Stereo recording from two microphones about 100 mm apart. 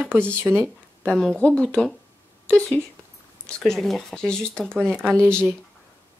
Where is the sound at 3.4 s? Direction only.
5° left (ahead or behind).